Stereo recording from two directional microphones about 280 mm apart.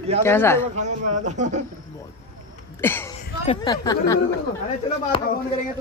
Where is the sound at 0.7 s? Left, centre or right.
Right.